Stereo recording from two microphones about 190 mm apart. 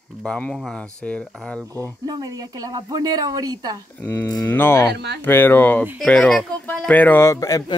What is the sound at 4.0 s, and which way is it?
Speech, 10° left (ahead or behind).